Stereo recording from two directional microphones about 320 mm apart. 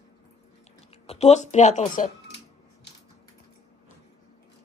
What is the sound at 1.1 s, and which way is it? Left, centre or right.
Speech, centre.